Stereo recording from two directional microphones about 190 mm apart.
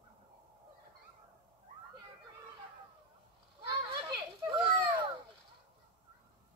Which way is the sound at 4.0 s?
25° right (ahead or behind).